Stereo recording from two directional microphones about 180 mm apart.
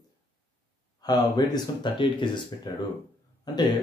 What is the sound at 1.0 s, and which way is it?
Speech, 20° left (ahead or behind).